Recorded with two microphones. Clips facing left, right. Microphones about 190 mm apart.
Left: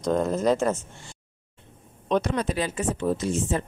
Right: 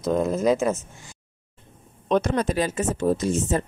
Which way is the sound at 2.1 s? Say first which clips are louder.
Right 3 dB; 45° right (ahead or behind).